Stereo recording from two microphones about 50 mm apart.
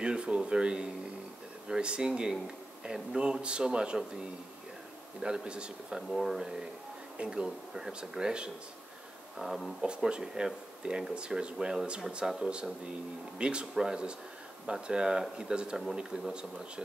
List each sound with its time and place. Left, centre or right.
0.0 s speech: right
5.2 s speech: centre
6.0 s speech: centre